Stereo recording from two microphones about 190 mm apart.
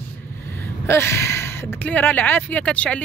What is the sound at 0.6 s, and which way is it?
Speech, 15° left (ahead or behind).